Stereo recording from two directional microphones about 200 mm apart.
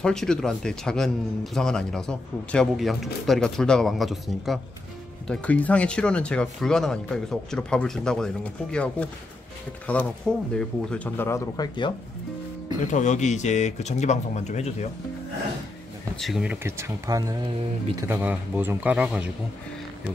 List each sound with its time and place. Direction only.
0.0 s a man's voice: 5° left (ahead or behind)
9.9 s a man's voice: 5° left (ahead or behind)
12.8 s speech: 40° left (ahead or behind)
16.2 s a man's voice: centre (ahead or behind)
16.6 s speech: 15° right (ahead or behind)